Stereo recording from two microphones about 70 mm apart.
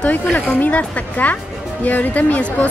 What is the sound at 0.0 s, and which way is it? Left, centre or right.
A woman's voice, left.